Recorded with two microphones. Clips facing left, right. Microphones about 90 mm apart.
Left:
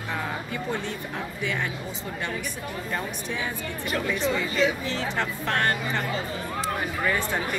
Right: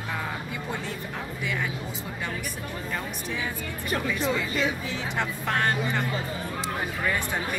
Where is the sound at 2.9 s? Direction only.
Centre (ahead or behind).